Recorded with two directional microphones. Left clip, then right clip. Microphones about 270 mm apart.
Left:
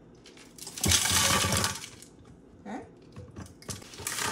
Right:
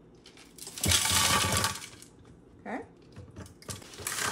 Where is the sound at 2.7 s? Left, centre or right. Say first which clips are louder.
Right 3 dB; centre.